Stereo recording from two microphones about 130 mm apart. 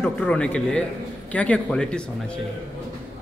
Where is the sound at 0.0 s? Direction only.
10° left (ahead or behind).